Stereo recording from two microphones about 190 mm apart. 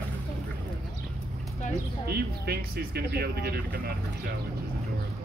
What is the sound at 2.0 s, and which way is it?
Speech, 55° right (ahead or behind).